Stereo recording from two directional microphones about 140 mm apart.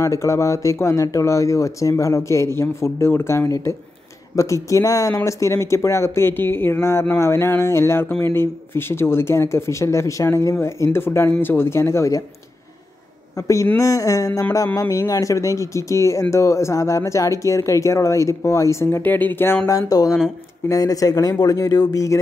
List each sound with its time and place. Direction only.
0.0 s speech: 20° left (ahead or behind)
13.7 s speech: 25° left (ahead or behind)